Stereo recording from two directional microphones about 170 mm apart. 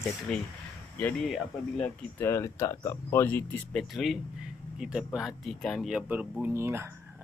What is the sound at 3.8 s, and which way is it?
Speech, centre (ahead or behind).